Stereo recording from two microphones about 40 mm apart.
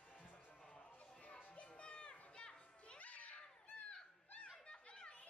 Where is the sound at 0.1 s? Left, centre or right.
Left.